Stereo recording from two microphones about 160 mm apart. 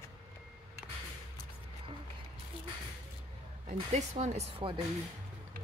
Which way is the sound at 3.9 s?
45° right (ahead or behind).